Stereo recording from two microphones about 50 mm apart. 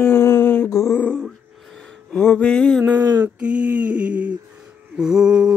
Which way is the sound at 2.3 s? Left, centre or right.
Centre.